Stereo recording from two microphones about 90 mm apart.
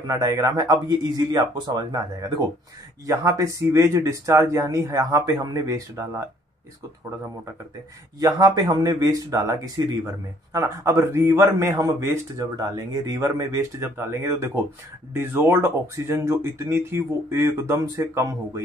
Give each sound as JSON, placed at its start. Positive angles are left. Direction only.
{"t": 0.0, "sound": "a man's voice", "side_deg": -40}
{"t": 3.1, "sound": "speech", "side_deg": -35}
{"t": 8.2, "sound": "speech", "side_deg": -45}
{"t": 12.4, "sound": "speech", "side_deg": -45}